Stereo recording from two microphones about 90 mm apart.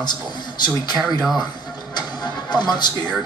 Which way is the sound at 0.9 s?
Centre (ahead or behind).